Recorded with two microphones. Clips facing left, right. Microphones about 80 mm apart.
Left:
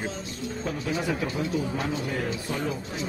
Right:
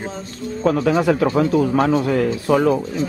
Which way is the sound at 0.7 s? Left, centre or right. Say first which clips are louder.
Right 13 dB; right.